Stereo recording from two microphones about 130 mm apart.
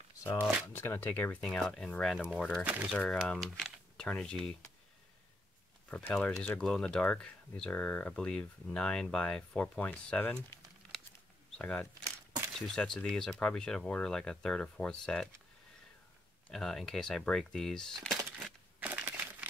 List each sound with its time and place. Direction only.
0.2 s speech: 15° left (ahead or behind)
2.6 s speech: 10° right (ahead or behind)
3.3 s speech: centre (ahead or behind)
5.9 s speech: 10° left (ahead or behind)
11.5 s speech: 5° left (ahead or behind)
12.0 s a sound: 25° right (ahead or behind)
12.5 s speech: 5° left (ahead or behind)
16.4 s speech: 5° left (ahead or behind)
18.4 s crushing: 15° right (ahead or behind)